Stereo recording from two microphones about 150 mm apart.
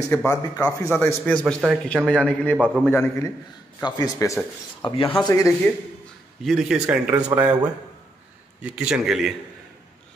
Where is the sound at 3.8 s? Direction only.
25° left (ahead or behind).